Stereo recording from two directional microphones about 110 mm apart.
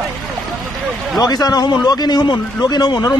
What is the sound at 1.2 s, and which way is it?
A man's voice, 35° left (ahead or behind).